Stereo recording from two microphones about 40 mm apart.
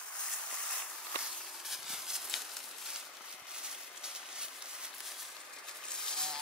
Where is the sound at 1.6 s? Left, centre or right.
Centre.